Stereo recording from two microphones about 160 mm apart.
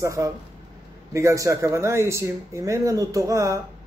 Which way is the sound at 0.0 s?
20° right (ahead or behind).